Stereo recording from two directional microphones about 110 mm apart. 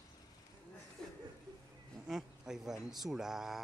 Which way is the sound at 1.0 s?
5° left (ahead or behind).